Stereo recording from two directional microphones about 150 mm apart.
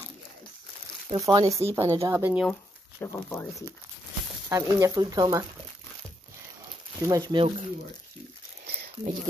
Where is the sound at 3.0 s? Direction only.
15° left (ahead or behind).